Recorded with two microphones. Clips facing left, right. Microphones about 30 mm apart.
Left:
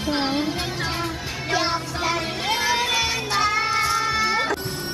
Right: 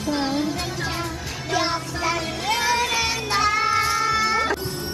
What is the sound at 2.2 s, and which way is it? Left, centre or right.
Music, left.